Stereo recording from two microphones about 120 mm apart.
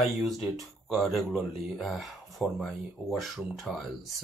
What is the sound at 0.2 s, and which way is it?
Speech, centre (ahead or behind).